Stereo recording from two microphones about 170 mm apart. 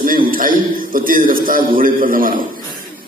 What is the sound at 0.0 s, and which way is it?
A man's voice, 55° right (ahead or behind).